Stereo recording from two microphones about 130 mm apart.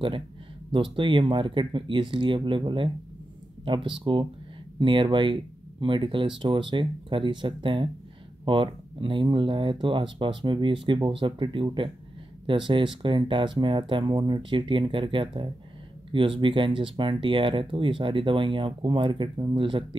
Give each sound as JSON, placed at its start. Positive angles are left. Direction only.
{"t": 0.7, "sound": "speech", "side_deg": -40}